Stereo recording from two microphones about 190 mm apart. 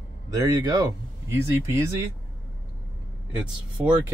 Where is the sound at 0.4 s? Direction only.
20° right (ahead or behind).